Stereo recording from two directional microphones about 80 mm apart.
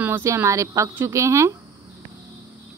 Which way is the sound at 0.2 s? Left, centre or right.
Right.